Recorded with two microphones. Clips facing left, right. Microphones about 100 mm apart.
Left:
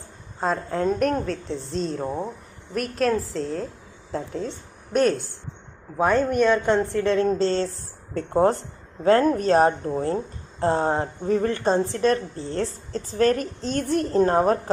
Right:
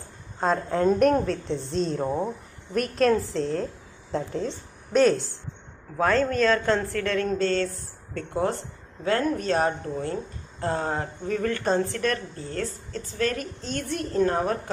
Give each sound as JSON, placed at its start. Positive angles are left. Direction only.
{"t": 0.4, "sound": "a woman's voice", "side_deg": 0}
{"t": 5.9, "sound": "a woman's voice", "side_deg": 15}